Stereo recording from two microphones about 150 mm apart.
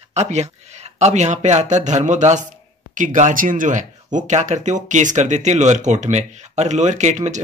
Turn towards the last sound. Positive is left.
turn(degrees=-50)  # may be behind; listen again after turning